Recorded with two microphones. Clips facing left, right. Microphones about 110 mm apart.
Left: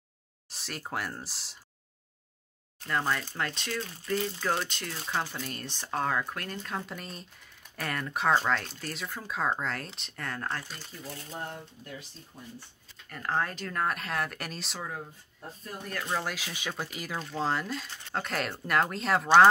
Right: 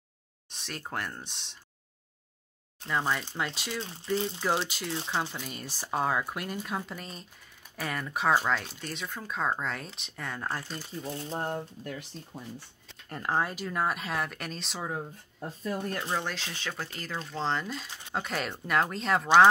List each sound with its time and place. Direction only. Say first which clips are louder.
0.5 s speech: left 1 dB; centre (ahead or behind)
2.9 s speech: even; 10° right (ahead or behind)
3.8 s speech: right 2 dB; 25° right (ahead or behind)
4.6 s speech: right 3 dB; 5° right (ahead or behind)
11.0 s speech: right 6 dB; 30° right (ahead or behind)
11.4 s speech: right 7 dB; 50° right (ahead or behind)
12.3 s speech: right 4 dB; 85° right
13.3 s speech: right 1 dB; 10° right (ahead or behind)
14.8 s speech: right 4 dB; 25° right (ahead or behind)
16.1 s speech: even; 5° left (ahead or behind)